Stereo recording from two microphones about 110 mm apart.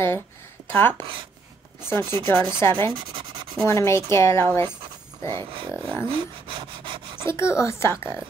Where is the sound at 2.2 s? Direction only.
25° left (ahead or behind).